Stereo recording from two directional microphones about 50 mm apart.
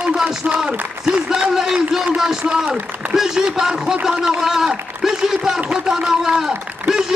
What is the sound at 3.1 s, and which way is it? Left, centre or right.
A man's voice, centre.